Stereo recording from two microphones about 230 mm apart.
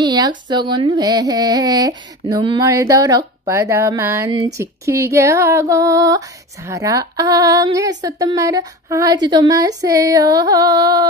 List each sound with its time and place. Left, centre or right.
0.0 s female singing: centre